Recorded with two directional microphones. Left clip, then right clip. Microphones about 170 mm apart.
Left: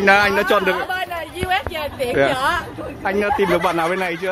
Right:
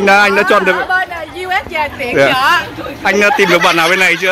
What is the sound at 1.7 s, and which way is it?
Speech, 55° left (ahead or behind).